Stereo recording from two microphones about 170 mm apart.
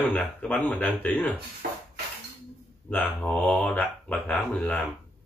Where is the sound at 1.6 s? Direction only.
65° right (ahead or behind).